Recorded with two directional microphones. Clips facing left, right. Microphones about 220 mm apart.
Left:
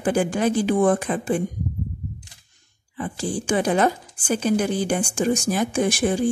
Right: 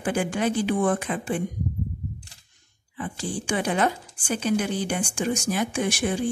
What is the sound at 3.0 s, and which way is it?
Speech, 40° left (ahead or behind).